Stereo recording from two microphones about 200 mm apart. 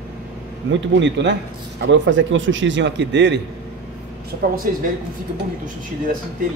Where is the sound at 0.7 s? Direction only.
70° right (ahead or behind).